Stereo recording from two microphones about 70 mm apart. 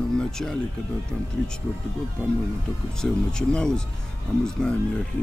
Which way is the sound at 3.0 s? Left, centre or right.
Centre.